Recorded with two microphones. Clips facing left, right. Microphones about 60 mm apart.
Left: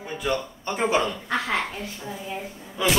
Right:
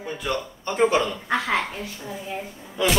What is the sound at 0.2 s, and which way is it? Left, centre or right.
Speech, centre.